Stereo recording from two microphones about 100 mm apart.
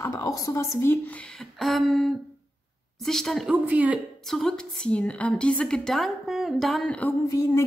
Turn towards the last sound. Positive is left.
turn(degrees=35)  # may be behind; listen again after turning